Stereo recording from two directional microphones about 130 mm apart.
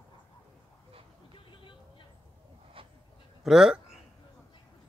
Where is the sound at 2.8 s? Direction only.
45° right (ahead or behind).